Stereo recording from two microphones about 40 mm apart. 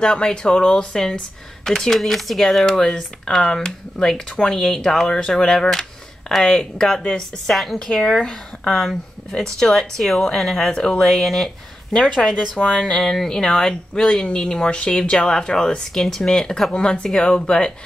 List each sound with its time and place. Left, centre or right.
0.0 s speech: centre
2.0 s speech: centre
2.4 s speech: centre
7.8 s speech: centre
10.7 s speech: left
11.1 s speech: centre
14.0 s speech: left